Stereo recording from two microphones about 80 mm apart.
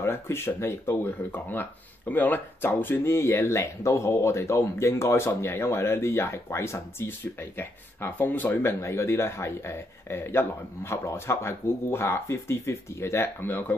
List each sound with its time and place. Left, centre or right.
0.0 s speech: left